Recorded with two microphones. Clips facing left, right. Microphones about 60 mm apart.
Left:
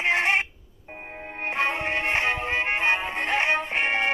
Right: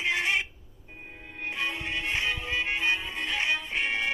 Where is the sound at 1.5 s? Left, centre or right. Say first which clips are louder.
Left 7 dB; left.